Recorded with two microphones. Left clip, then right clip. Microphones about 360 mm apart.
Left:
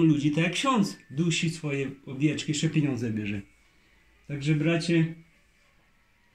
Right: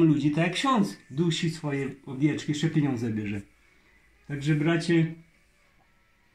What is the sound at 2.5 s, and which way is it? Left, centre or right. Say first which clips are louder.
Speech: even; centre.